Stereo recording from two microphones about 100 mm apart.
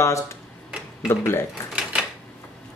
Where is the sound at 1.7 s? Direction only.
10° right (ahead or behind).